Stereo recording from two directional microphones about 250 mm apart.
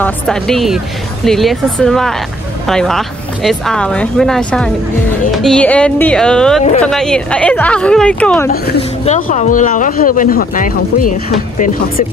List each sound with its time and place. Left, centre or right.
0.0 s speech: centre
8.5 s speech: left